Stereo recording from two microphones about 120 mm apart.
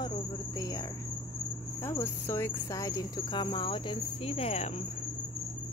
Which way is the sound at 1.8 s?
20° left (ahead or behind).